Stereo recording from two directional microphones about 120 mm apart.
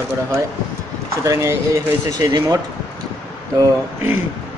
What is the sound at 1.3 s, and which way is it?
Speech, 25° right (ahead or behind).